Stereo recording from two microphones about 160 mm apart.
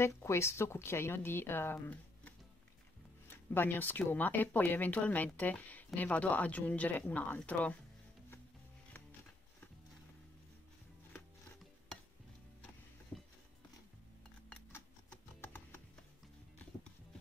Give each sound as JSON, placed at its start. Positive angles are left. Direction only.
{"t": 0.0, "sound": "speech", "side_deg": 15}
{"t": 15.4, "sound": "typing", "side_deg": 15}